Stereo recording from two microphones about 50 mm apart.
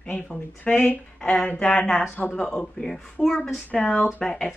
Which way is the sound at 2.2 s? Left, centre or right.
Left.